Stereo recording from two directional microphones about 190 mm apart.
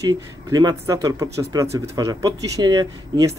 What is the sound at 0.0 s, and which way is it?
Speech, 20° right (ahead or behind).